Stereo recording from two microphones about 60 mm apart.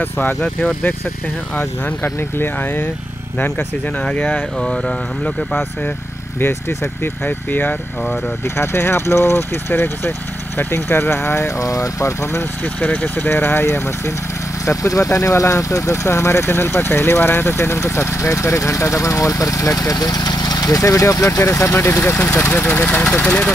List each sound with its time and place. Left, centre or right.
0.0 s speech: left
0.4 s speech: left
2.3 s speech: left; by 5.6 s centre
6.4 s speech: left
8.5 s speech: left
12.8 s speech: left
14.7 s speech: left
17.7 s speech: left
22.4 s speech: left